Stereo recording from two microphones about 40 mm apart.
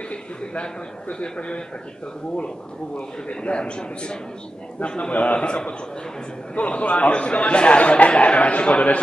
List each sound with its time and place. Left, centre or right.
1.2 s a man's voice: left
3.0 s a man's voice: left